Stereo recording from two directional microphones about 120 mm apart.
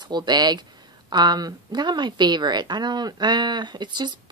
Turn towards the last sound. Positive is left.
turn(degrees=-40)  # may be behind; listen again after turning